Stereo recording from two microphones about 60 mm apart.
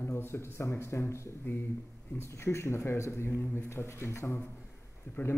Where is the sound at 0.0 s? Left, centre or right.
Left.